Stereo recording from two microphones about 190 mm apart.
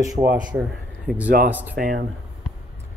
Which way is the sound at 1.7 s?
50° right (ahead or behind).